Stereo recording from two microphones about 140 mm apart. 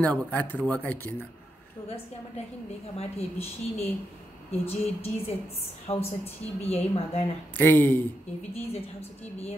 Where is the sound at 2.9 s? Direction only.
45° left (ahead or behind).